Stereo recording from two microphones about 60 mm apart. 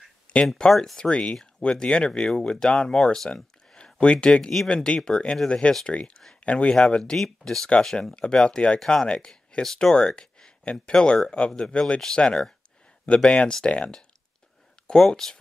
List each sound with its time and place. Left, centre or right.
0.6 s speech: centre
14.9 s speech: centre